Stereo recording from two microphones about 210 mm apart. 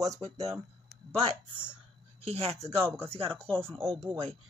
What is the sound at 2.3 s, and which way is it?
Speech, 30° right (ahead or behind).